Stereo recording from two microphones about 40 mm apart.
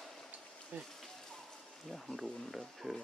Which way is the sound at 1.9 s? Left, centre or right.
Centre.